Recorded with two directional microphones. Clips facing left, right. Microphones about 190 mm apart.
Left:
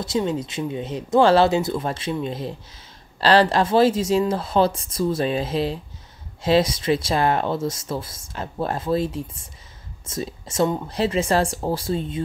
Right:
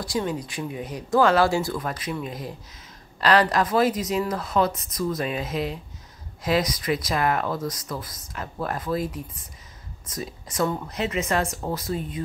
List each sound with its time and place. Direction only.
0.0 s speech: 25° left (ahead or behind)